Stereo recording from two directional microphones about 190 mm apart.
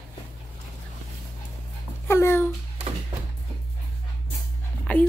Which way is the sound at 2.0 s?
15° left (ahead or behind).